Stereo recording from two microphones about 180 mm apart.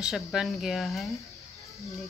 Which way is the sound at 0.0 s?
Centre (ahead or behind).